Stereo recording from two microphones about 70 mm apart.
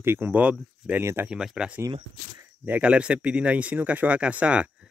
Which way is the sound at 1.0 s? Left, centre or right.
Right.